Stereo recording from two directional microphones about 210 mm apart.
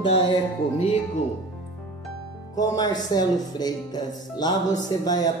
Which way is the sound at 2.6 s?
20° left (ahead or behind).